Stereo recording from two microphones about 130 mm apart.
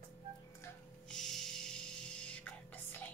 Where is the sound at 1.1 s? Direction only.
Centre (ahead or behind).